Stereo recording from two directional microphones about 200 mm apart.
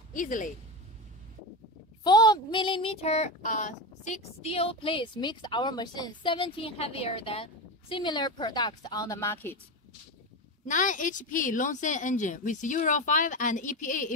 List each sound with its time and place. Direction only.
0.1 s speech: 40° left (ahead or behind)
2.0 s child singing: 20° left (ahead or behind)
10.7 s a woman's voice: 40° left (ahead or behind)